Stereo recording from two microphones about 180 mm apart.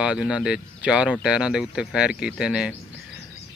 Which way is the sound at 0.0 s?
5° right (ahead or behind).